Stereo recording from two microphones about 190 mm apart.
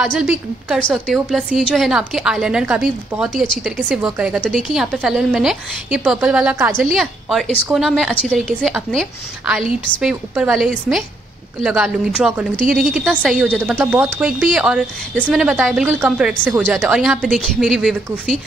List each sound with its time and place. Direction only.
0.0 s speech: 5° right (ahead or behind)
12.6 s a woman's voice: 45° right (ahead or behind)
13.2 s speech: centre (ahead or behind)
13.7 s speech: 10° right (ahead or behind)
14.2 s a woman's voice: centre (ahead or behind)